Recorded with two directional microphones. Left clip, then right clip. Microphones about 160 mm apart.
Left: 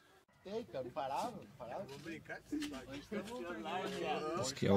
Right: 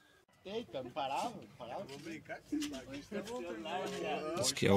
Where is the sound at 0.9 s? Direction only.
5° right (ahead or behind).